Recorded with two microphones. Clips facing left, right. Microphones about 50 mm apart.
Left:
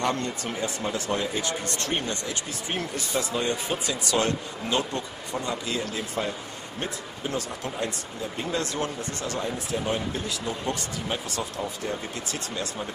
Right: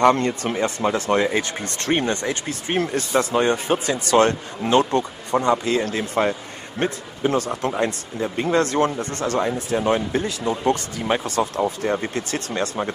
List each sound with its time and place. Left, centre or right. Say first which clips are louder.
0.0 s speech: right 10 dB; right
1.5 s speech: right 6 dB; right
9.8 s speech: right 9 dB; right
10.2 s speech: right 9 dB; right
11.6 s speech: right 9 dB; right
12.2 s speech: right 8 dB; right